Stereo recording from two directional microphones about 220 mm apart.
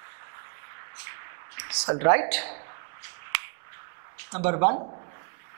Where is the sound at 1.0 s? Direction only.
20° right (ahead or behind).